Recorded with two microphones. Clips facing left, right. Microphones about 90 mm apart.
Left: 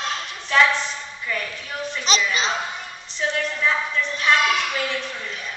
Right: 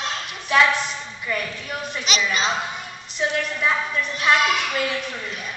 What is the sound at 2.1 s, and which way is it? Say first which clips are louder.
Speech: left 3 dB; 35° left (ahead or behind).